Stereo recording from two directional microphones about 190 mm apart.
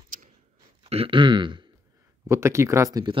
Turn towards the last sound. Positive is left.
turn(degrees=-20)  # may be behind; listen again after turning